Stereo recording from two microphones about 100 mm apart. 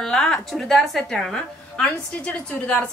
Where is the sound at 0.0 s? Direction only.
5° left (ahead or behind).